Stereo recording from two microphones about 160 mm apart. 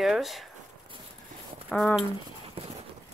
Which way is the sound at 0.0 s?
Centre (ahead or behind).